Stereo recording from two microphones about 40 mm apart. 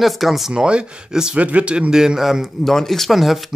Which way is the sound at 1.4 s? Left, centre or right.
Right.